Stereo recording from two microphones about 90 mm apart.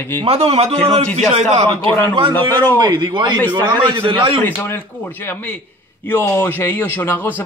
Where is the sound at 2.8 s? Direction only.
50° right (ahead or behind).